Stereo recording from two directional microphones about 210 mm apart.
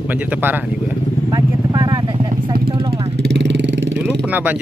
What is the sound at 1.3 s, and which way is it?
Vehicle, 20° right (ahead or behind).